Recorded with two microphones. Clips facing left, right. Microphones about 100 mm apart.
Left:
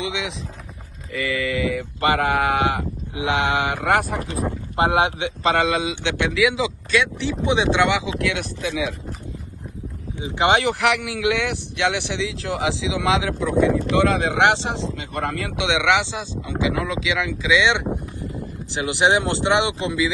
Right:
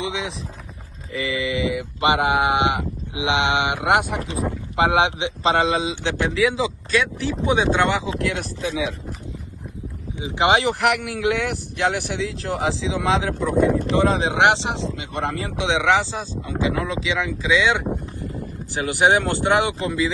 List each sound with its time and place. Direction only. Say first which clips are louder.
0.0 s a sound: even; 35° right (ahead or behind)
1.2 s speech: even; 20° right (ahead or behind); by 8.9 s 35° right (ahead or behind)
10.2 s speech: even; 30° right (ahead or behind)